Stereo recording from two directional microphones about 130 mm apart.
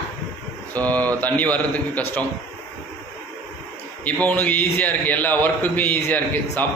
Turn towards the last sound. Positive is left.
turn(degrees=15)  # may be behind; listen again after turning